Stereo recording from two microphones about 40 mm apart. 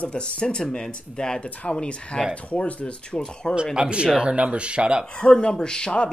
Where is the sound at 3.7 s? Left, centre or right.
Right.